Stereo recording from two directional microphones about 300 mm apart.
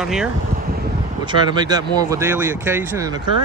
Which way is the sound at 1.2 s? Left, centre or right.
Centre.